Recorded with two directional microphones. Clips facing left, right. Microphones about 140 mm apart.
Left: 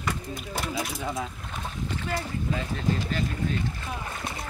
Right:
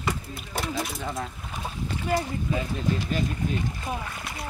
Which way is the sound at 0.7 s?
Centre (ahead or behind).